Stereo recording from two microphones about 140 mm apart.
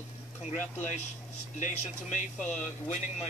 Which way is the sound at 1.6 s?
65° left (ahead or behind).